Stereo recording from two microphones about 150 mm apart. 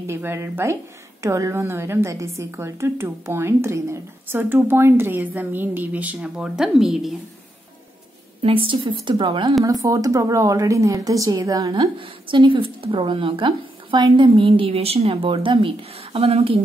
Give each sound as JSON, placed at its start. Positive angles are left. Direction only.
{"t": 0.0, "sound": "a woman's voice", "side_deg": -15}
{"t": 8.4, "sound": "speech", "side_deg": -40}
{"t": 12.0, "sound": "speech", "side_deg": -35}